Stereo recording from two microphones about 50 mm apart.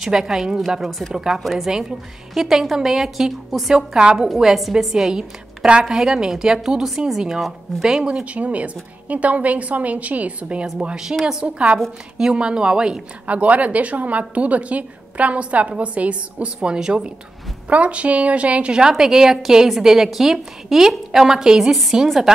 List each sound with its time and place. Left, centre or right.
0.0 s a woman's voice: centre
1.4 s a woman's voice: centre
1.7 s a woman's voice: centre
2.4 s a woman's voice: centre
4.3 s a woman's voice: centre
11.4 s a woman's voice: right
13.3 s a woman's voice: right; by 22.3 s centre